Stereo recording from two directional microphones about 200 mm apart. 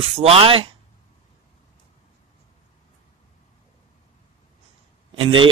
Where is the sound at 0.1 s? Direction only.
30° right (ahead or behind).